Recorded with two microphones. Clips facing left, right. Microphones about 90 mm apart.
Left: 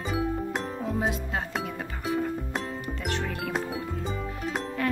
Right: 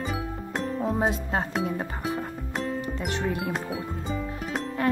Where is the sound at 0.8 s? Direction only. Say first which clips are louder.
Right 4 dB; 35° right (ahead or behind).